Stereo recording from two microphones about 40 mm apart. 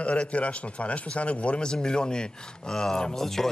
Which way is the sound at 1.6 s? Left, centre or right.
Centre.